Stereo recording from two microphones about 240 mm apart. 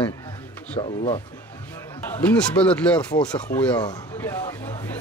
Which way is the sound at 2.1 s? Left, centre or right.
Centre.